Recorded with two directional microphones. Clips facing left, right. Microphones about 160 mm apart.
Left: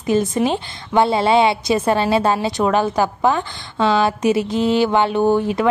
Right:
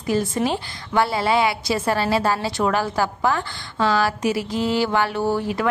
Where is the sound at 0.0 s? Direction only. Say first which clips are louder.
Left 4 dB; 20° left (ahead or behind).